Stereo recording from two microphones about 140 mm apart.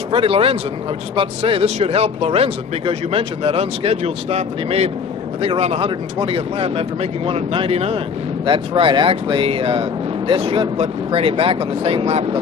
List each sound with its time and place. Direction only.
0.1 s speech: 40° right (ahead or behind)